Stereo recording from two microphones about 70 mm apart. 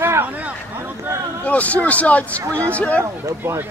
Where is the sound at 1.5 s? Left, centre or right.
Left.